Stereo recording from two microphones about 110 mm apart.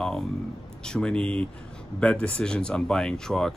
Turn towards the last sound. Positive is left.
turn(degrees=5)  # may be behind; listen again after turning